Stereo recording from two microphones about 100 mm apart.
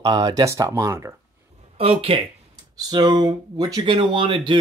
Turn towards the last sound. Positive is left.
turn(degrees=-55)  # may be behind; listen again after turning